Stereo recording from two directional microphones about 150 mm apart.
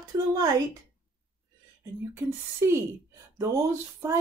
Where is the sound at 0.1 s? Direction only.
25° right (ahead or behind).